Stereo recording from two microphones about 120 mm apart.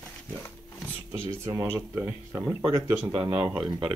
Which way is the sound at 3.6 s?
40° right (ahead or behind).